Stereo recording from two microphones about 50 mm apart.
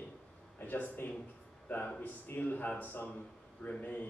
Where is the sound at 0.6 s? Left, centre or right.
Left.